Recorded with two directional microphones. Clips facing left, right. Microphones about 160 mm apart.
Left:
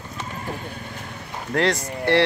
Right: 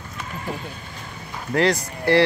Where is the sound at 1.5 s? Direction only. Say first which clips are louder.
Right 2 dB; centre (ahead or behind).